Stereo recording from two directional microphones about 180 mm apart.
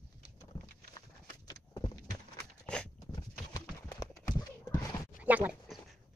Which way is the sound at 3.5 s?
20° left (ahead or behind).